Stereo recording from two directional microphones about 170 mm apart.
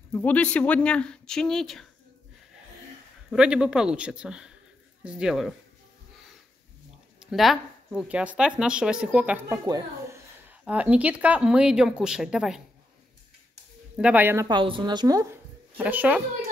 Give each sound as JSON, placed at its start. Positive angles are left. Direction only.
{"t": 0.1, "sound": "speech", "side_deg": 10}
{"t": 3.3, "sound": "speech", "side_deg": -5}
{"t": 7.2, "sound": "speech", "side_deg": 0}
{"t": 9.7, "sound": "a child's voice", "side_deg": -20}
{"t": 10.5, "sound": "speech", "side_deg": -10}
{"t": 13.9, "sound": "speech", "side_deg": -10}
{"t": 14.6, "sound": "speech", "side_deg": -30}